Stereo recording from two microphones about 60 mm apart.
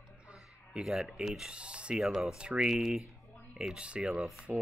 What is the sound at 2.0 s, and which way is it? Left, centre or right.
Speech, centre.